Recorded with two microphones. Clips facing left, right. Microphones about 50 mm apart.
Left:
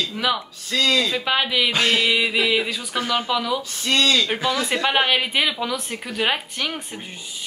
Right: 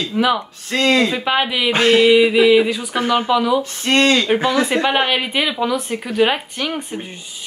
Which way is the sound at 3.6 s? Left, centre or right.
Right.